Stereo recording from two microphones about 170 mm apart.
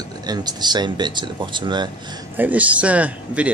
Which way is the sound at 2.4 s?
10° right (ahead or behind).